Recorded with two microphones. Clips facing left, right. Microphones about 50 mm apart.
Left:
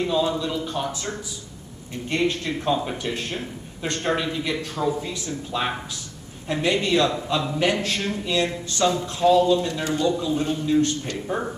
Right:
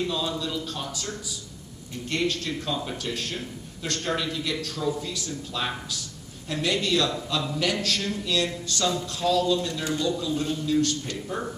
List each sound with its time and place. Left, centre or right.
0.0 s a man's voice: left
2.0 s a man's voice: left
11.1 s speech: left